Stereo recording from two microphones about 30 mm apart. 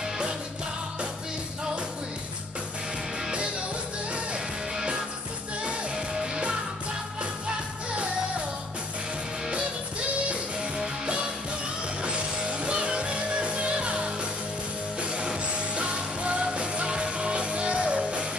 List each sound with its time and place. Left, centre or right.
5.9 s music: centre
12.0 s music: right